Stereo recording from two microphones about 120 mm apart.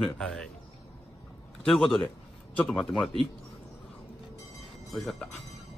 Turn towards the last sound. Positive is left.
turn(degrees=5)  # may be behind; listen again after turning